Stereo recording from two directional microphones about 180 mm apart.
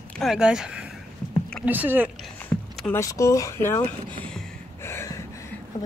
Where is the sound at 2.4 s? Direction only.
10° left (ahead or behind).